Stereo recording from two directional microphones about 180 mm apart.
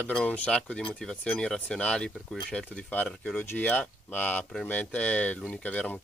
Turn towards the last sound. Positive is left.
turn(degrees=10)  # may be behind; listen again after turning